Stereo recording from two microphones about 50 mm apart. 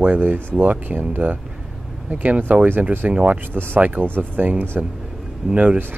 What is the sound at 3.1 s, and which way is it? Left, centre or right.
Speech, right.